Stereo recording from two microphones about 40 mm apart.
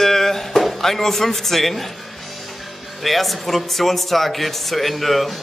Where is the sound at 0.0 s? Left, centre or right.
Centre.